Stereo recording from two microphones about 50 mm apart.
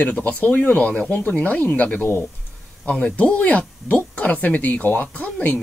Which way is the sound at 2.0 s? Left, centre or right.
Left.